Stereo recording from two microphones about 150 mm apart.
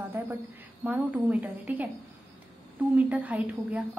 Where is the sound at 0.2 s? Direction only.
15° right (ahead or behind).